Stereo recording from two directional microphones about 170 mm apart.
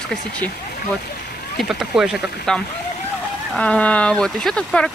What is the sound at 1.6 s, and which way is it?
Speech, 5° right (ahead or behind).